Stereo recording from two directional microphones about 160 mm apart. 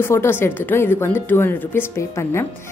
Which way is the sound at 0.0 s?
15° left (ahead or behind).